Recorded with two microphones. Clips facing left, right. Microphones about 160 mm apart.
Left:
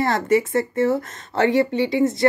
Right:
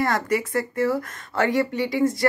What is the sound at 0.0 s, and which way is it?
Speech, 25° left (ahead or behind).